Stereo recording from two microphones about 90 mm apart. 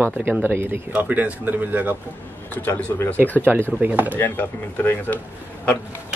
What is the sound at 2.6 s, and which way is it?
Speech, 20° left (ahead or behind).